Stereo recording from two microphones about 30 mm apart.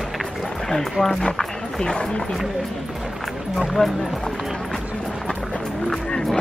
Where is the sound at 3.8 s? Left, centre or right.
Centre.